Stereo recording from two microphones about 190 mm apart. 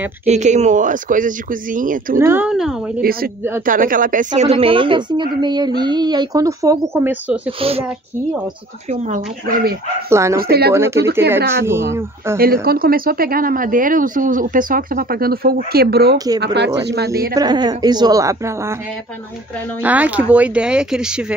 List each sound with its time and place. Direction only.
0.2 s speech: 35° right (ahead or behind)
2.1 s speech: 10° right (ahead or behind)
3.0 s a woman's voice: 50° right (ahead or behind); by 7.3 s 10° right (ahead or behind)
9.1 s speech: 50° right (ahead or behind)
10.0 s speech: 15° right (ahead or behind)
12.6 s speech: 50° right (ahead or behind)
17.3 s speech: 20° right (ahead or behind)
19.8 s speech: 10° right (ahead or behind)